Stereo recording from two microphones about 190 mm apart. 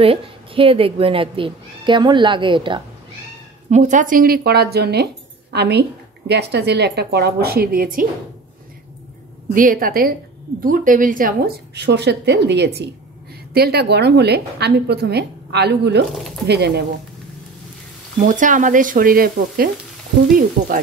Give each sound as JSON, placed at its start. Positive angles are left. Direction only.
{"t": 0.0, "sound": "speech", "side_deg": -30}
{"t": 3.7, "sound": "frying", "side_deg": -40}
{"t": 5.5, "sound": "a woman's voice", "side_deg": -60}
{"t": 9.5, "sound": "frying", "side_deg": -45}
{"t": 10.6, "sound": "a woman's voice", "side_deg": -45}
{"t": 18.2, "sound": "frying", "side_deg": -40}